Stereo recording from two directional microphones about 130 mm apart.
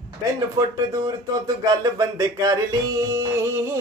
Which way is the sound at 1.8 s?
30° right (ahead or behind).